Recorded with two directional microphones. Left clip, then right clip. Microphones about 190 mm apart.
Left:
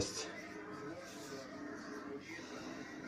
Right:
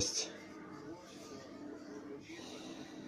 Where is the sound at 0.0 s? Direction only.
25° right (ahead or behind).